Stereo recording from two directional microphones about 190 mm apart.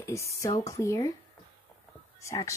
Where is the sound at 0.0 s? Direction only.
15° left (ahead or behind).